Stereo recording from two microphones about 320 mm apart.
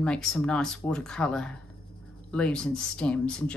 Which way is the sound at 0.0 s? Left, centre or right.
Centre.